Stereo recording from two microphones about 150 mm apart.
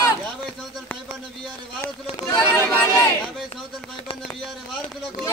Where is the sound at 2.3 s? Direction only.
15° left (ahead or behind).